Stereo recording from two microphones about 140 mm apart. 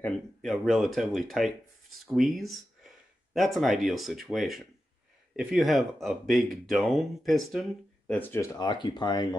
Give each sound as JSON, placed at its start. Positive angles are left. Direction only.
{"t": 0.0, "sound": "speech", "side_deg": 0}
{"t": 8.1, "sound": "speech", "side_deg": 15}
{"t": 8.5, "sound": "speech", "side_deg": 30}